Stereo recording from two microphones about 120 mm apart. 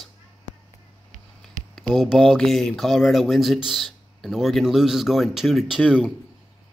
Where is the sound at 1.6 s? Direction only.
90° right.